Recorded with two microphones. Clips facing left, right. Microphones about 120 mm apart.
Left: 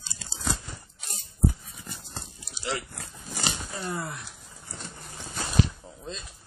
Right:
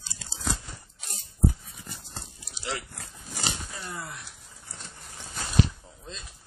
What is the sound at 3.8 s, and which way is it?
Speech, 55° left (ahead or behind).